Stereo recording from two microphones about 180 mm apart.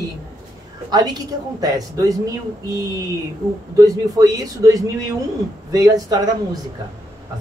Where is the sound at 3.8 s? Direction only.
20° right (ahead or behind).